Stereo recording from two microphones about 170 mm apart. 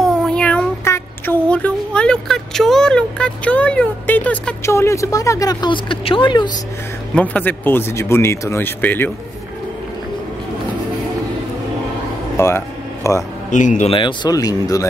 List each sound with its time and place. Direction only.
0.0 s child singing: 5° left (ahead or behind); by 6.5 s 25° left (ahead or behind)
7.2 s speech: 10° left (ahead or behind)
12.4 s a sound: 15° left (ahead or behind)
13.5 s speech: 45° left (ahead or behind)
13.9 s speech: 25° left (ahead or behind)